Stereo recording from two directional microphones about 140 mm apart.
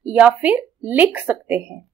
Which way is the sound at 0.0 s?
10° right (ahead or behind).